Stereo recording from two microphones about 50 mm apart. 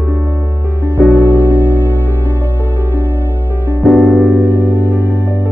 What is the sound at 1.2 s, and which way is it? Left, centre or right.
Music, right.